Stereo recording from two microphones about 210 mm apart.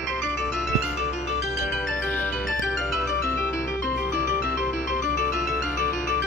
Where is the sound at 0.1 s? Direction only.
Centre (ahead or behind).